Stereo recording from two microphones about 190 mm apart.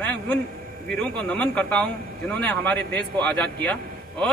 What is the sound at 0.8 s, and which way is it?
A man's voice, 5° left (ahead or behind).